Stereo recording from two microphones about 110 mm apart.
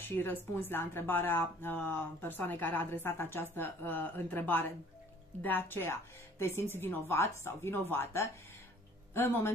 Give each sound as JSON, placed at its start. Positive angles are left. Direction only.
{"t": 0.0, "sound": "speech", "side_deg": 20}